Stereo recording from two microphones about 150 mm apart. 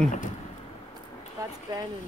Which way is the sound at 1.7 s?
25° right (ahead or behind).